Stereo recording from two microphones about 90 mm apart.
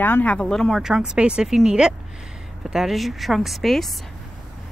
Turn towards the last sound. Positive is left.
turn(degrees=0)  # may be behind; listen again after turning